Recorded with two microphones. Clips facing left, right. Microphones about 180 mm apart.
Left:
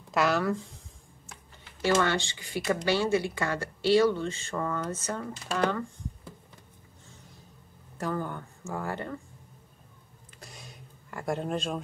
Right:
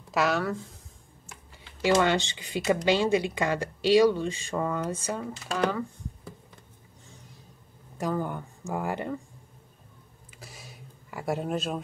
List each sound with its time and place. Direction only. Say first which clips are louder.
0.1 s speech: even; centre (ahead or behind)
1.8 s speech: right 3 dB; 15° right (ahead or behind)
8.0 s speech: right 3 dB; 15° right (ahead or behind)
10.3 s a sound: right 1 dB; 5° right (ahead or behind)